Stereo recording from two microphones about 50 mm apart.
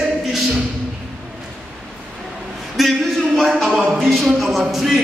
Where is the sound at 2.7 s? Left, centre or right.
Centre.